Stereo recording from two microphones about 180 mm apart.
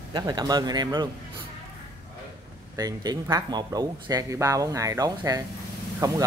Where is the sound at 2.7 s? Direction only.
20° right (ahead or behind).